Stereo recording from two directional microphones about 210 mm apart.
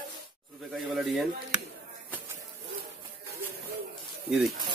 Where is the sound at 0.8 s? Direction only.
Centre (ahead or behind).